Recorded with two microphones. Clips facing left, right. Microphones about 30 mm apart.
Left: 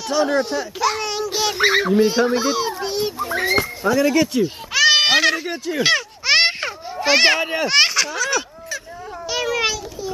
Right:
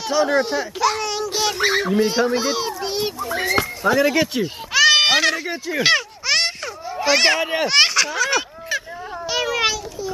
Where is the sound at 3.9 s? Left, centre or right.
Centre.